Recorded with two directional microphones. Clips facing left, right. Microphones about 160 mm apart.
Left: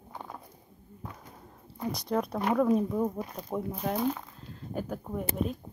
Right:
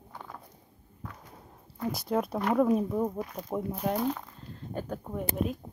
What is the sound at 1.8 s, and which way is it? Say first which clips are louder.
Speech: right 1 dB; 5° right (ahead or behind).